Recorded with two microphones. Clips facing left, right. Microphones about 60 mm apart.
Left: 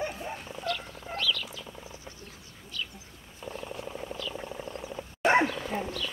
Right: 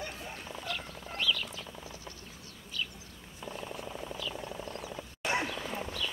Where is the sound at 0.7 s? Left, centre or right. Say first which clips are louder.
Left 7 dB; centre.